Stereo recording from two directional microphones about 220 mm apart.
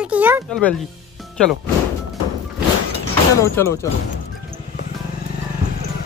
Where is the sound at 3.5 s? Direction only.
15° left (ahead or behind).